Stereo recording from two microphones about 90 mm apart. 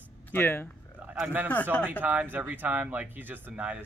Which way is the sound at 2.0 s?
20° right (ahead or behind).